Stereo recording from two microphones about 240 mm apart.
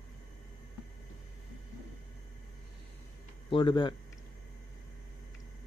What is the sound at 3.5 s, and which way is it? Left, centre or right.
Speech, left.